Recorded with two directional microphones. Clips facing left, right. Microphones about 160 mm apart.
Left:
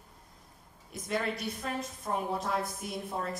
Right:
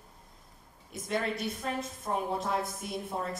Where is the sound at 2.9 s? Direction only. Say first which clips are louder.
Right 1 dB; centre (ahead or behind).